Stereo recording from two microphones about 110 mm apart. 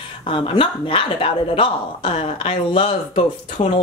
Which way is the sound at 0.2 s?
50° left (ahead or behind).